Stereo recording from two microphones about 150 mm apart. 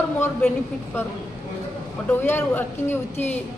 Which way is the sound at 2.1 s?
15° left (ahead or behind).